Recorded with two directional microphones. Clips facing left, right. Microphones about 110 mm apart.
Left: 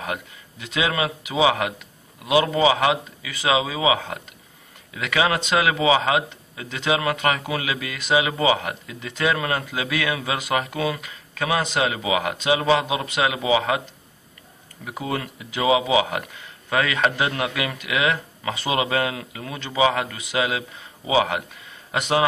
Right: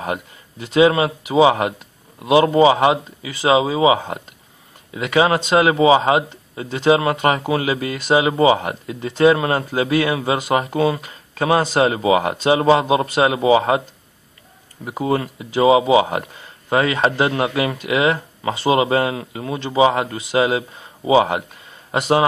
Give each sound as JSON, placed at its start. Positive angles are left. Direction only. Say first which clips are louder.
{"t": 0.0, "sound": "speech", "louder": "right 5 dB", "side_deg": -30}
{"t": 14.9, "sound": "speech", "louder": "right 7 dB", "side_deg": -30}